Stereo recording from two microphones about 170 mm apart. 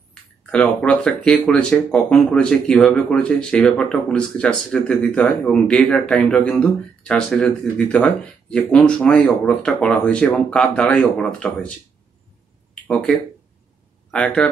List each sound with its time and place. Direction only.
0.1 s speech: 5° left (ahead or behind)
12.8 s speech: 5° left (ahead or behind)
14.1 s speech: 5° left (ahead or behind)